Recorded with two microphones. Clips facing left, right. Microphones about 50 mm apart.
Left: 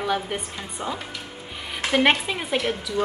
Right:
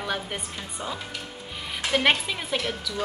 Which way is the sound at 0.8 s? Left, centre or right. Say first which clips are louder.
Left 4 dB; left.